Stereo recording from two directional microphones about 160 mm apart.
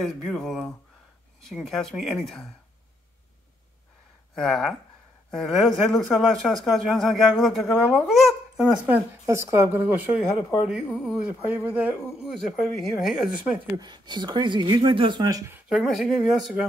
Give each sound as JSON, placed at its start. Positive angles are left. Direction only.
{"t": 0.0, "sound": "speech", "side_deg": 0}
{"t": 4.4, "sound": "speech", "side_deg": 0}
{"t": 13.7, "sound": "speech", "side_deg": -25}
{"t": 15.7, "sound": "speech", "side_deg": 0}